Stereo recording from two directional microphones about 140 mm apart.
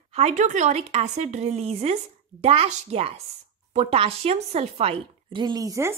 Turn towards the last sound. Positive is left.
turn(degrees=-25)  # may be behind; listen again after turning